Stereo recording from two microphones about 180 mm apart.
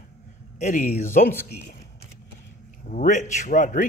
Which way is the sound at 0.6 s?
45° left (ahead or behind).